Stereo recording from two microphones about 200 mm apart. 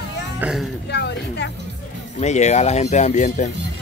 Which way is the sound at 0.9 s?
60° left (ahead or behind).